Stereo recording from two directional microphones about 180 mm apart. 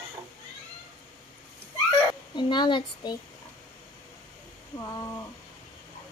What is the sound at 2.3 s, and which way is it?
Speech, 25° left (ahead or behind).